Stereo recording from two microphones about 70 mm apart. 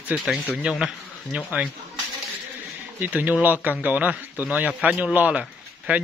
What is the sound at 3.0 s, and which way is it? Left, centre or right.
Speech, right.